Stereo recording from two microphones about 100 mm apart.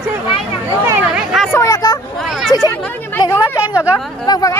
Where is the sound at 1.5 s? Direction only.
35° left (ahead or behind).